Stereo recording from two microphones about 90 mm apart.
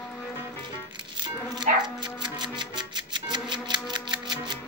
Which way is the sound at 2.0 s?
55° right (ahead or behind).